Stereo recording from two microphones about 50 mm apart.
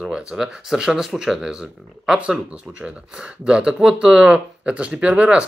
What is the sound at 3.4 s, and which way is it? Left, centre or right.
Speech, centre.